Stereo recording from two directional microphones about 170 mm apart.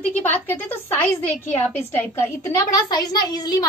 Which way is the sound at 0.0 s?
10° left (ahead or behind).